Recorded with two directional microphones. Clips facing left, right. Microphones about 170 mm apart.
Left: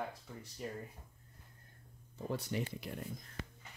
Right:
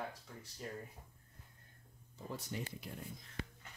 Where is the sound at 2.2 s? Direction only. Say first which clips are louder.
Left 6 dB; 70° left (ahead or behind).